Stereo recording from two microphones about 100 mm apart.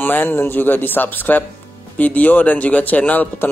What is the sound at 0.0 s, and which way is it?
Speech, 20° left (ahead or behind).